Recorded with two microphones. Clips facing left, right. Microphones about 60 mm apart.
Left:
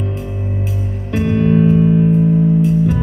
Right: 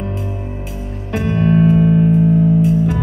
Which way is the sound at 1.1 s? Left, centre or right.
Right.